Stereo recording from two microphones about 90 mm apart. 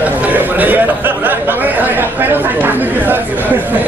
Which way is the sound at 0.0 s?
20° right (ahead or behind).